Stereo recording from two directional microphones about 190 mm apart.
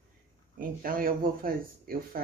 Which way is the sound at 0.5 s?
50° right (ahead or behind).